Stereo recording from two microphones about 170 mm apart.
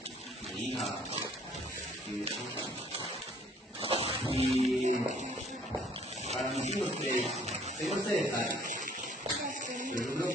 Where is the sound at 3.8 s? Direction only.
35° right (ahead or behind).